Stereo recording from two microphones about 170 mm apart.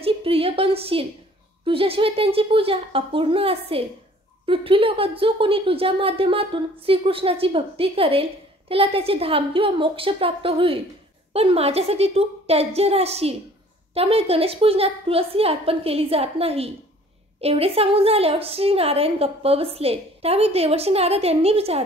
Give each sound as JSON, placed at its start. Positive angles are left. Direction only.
{"t": 0.0, "sound": "a woman's voice", "side_deg": -35}